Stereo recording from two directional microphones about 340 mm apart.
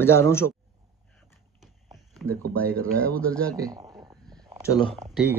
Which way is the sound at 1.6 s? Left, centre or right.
Centre.